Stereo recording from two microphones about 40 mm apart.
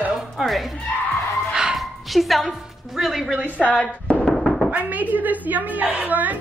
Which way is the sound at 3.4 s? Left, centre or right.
Right.